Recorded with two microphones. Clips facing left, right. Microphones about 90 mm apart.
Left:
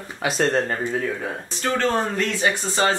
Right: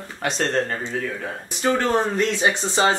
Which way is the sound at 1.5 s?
15° right (ahead or behind).